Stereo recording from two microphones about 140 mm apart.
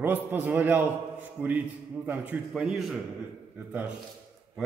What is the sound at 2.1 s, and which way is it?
Speech, 10° right (ahead or behind).